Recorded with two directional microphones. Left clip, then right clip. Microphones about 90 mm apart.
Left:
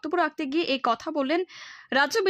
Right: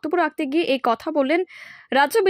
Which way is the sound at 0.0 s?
30° right (ahead or behind).